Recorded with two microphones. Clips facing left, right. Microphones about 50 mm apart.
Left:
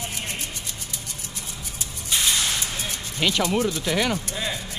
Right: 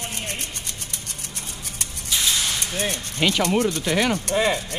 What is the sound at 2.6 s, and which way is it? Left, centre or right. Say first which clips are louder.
Speech: right 4 dB; right.